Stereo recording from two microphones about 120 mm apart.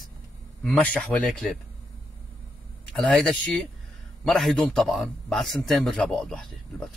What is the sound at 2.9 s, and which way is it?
Speech, 5° left (ahead or behind).